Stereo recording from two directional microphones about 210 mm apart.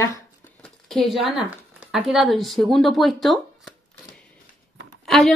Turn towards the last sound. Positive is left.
turn(degrees=0)  # may be behind; listen again after turning